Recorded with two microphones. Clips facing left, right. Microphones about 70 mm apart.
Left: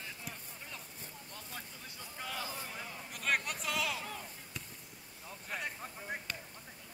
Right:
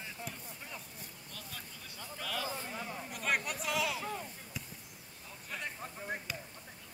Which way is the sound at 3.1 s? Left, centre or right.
Centre.